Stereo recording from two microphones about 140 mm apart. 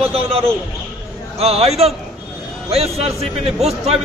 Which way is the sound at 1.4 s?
45° right (ahead or behind).